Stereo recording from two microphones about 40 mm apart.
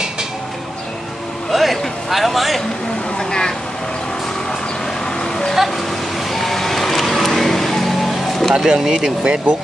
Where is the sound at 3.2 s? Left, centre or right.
Centre.